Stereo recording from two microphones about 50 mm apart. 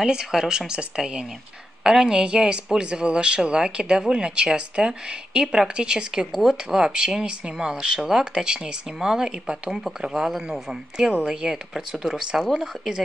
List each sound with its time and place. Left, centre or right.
0.0 s a woman's voice: centre